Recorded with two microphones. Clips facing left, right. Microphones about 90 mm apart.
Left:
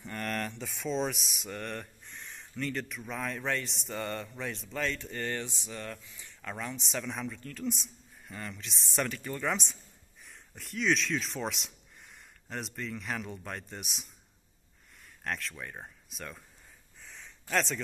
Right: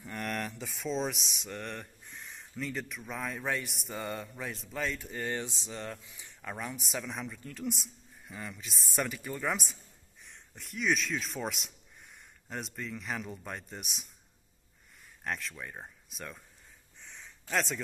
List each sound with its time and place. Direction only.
0.0 s speech: 10° right (ahead or behind)
6.8 s speech: 5° right (ahead or behind)
7.3 s speech: 20° right (ahead or behind)
7.8 s speech: 5° right (ahead or behind)
15.2 s speech: centre (ahead or behind)
17.0 s a sound: centre (ahead or behind)